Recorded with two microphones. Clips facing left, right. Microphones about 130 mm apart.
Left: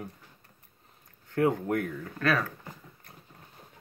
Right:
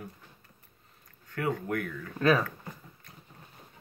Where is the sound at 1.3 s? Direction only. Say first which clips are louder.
Left 5 dB; 30° left (ahead or behind).